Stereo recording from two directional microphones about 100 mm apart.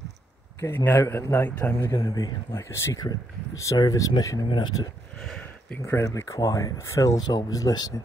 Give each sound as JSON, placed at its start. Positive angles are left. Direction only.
{"t": 0.6, "sound": "a man's voice", "side_deg": 25}
{"t": 1.9, "sound": "speech", "side_deg": 40}
{"t": 4.5, "sound": "speech", "side_deg": 50}
{"t": 5.9, "sound": "speech", "side_deg": 30}
{"t": 7.2, "sound": "speech", "side_deg": 45}